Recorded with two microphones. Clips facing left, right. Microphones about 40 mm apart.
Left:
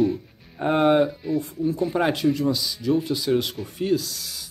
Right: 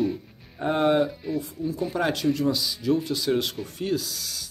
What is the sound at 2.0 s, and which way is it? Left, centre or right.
Speech, left.